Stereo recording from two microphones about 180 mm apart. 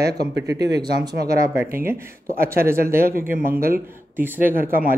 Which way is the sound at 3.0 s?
50° right (ahead or behind).